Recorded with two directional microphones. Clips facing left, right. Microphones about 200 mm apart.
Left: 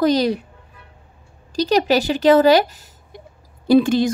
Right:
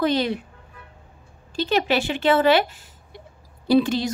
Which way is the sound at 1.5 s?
40° left (ahead or behind).